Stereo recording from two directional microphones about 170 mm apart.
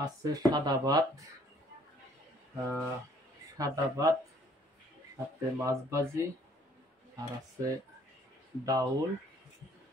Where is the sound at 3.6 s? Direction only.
20° right (ahead or behind).